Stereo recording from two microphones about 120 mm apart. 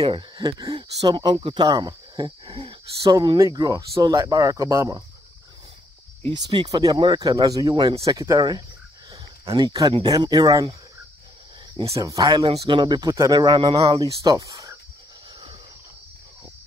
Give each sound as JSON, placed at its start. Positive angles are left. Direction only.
{"t": 0.4, "sound": "speech", "side_deg": -35}
{"t": 2.5, "sound": "speech", "side_deg": -50}
{"t": 3.1, "sound": "speech", "side_deg": -30}
{"t": 6.4, "sound": "speech", "side_deg": -35}
{"t": 9.1, "sound": "a sound", "side_deg": -30}
{"t": 10.0, "sound": "speech", "side_deg": -35}
{"t": 12.0, "sound": "speech", "side_deg": -30}
{"t": 12.4, "sound": "speech", "side_deg": -45}